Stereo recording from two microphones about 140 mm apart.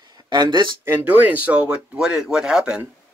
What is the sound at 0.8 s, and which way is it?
Speech, 10° right (ahead or behind).